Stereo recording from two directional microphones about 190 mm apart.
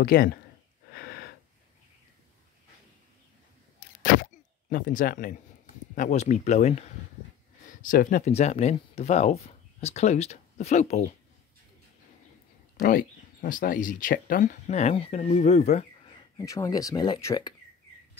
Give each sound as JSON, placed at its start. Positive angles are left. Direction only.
{"t": 0.0, "sound": "speech", "side_deg": 50}
{"t": 0.9, "sound": "gasp", "side_deg": 55}
{"t": 4.0, "sound": "a sound", "side_deg": 45}
{"t": 5.9, "sound": "speech", "side_deg": 40}
{"t": 7.8, "sound": "speech", "side_deg": 45}
{"t": 12.7, "sound": "speech", "side_deg": 45}
{"t": 16.3, "sound": "speech", "side_deg": 15}